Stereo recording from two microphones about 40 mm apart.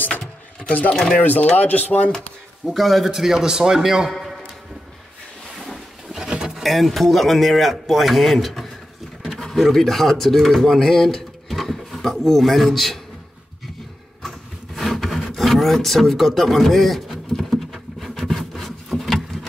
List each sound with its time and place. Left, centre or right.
1.2 s speech: left
2.6 s a man's voice: centre
3.1 s a man's voice: centre
6.1 s a sound: centre
6.5 s a man's voice: centre
14.8 s wood: centre
15.3 s speech: centre
18.1 s a sound: centre